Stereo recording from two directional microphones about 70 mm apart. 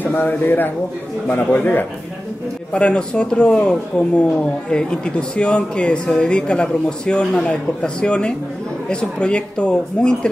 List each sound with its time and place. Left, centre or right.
0.0 s a man's voice: left